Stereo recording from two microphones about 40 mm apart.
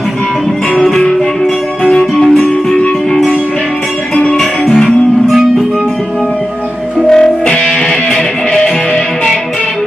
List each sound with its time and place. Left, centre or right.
1.9 s music: centre
4.1 s music: left
7.1 s music: left
7.6 s music: centre